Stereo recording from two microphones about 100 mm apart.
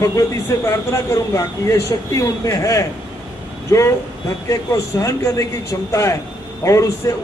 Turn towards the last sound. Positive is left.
turn(degrees=30)  # may be behind; listen again after turning